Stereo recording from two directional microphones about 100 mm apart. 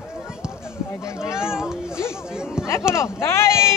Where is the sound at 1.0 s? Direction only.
30° left (ahead or behind).